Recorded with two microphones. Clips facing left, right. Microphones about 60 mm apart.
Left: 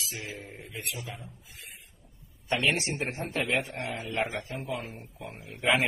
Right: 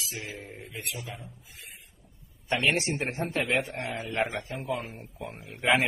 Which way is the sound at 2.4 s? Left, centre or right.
Right.